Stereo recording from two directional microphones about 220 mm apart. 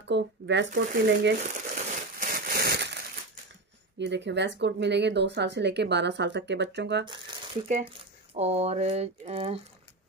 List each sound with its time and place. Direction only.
0.1 s speech: 55° right (ahead or behind)
0.7 s speech: 40° right (ahead or behind)
1.5 s a sound: 35° right (ahead or behind)
4.0 s speech: 55° right (ahead or behind)
8.4 s speech: 30° right (ahead or behind)